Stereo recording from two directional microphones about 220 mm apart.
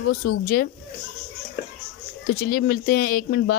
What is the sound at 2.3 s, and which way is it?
Speech, 40° left (ahead or behind).